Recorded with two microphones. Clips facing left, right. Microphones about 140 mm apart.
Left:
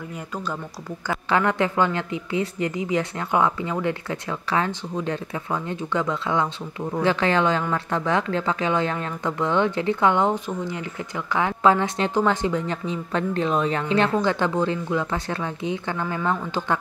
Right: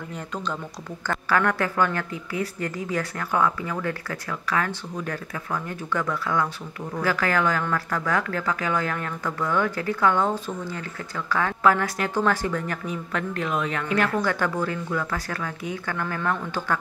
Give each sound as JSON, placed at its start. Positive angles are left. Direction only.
{"t": 0.1, "sound": "speech", "side_deg": 5}
{"t": 1.3, "sound": "speech", "side_deg": 20}